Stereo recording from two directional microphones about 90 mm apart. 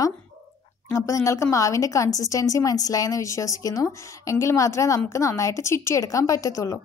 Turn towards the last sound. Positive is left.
turn(degrees=40)  # may be behind; listen again after turning